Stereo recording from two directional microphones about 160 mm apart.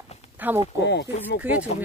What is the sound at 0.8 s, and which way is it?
Speech, 90° left.